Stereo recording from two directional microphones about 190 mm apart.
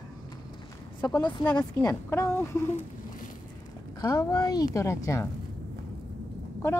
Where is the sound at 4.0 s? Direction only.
20° left (ahead or behind).